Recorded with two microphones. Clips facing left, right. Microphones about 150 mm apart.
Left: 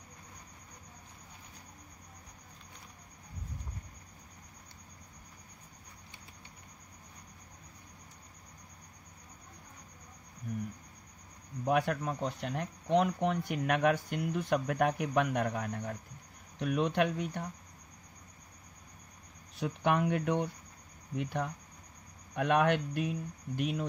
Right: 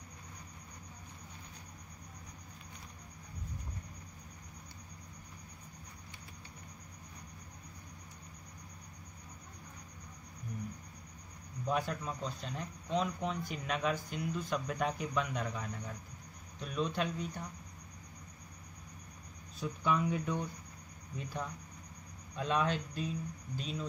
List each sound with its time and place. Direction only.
11.6 s speech: 65° left (ahead or behind)
19.5 s speech: 65° left (ahead or behind)